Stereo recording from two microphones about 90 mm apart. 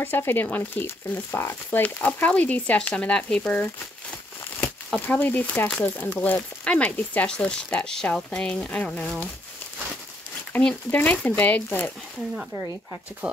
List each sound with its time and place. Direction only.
0.0 s speech: 25° left (ahead or behind)
10.6 s speech: 10° left (ahead or behind)
13.2 s speech: 10° right (ahead or behind)